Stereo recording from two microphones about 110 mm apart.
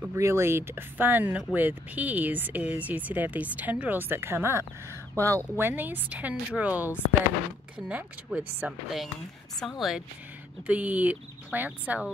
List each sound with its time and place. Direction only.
0.0 s speech: 25° right (ahead or behind)
9.6 s a woman's voice: centre (ahead or behind)
10.7 s speech: 15° right (ahead or behind)